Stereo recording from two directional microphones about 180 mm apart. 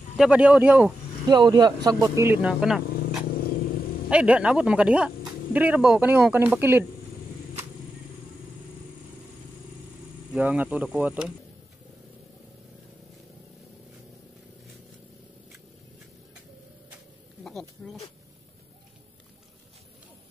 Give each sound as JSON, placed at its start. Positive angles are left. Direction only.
{"t": 0.2, "sound": "speech", "side_deg": -5}
{"t": 1.3, "sound": "speech", "side_deg": -25}
{"t": 2.9, "sound": "vehicle", "side_deg": 60}
{"t": 4.1, "sound": "speech", "side_deg": -5}
{"t": 10.3, "sound": "speech", "side_deg": -5}
{"t": 16.9, "sound": "a sound", "side_deg": 0}